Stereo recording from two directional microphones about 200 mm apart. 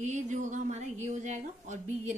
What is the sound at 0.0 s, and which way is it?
A woman's voice, 35° right (ahead or behind).